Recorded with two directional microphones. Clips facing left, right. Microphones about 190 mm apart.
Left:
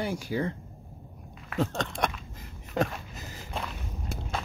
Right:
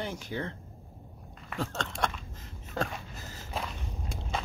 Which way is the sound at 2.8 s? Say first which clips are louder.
Left 5 dB; 20° left (ahead or behind).